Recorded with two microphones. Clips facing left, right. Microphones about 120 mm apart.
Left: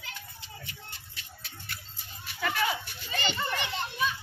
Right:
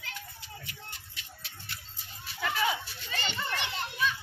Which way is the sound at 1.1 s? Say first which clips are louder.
Left 1 dB; 45° left (ahead or behind).